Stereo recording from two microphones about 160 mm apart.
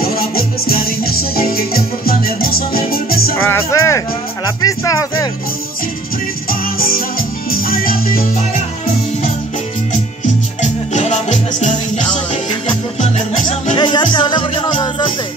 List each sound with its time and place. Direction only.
0.0 s music: 70° left (ahead or behind)
3.4 s music: 15° left (ahead or behind)
6.5 s music: 65° left (ahead or behind)
10.6 s music: 45° left (ahead or behind)
13.7 s music: 30° left (ahead or behind)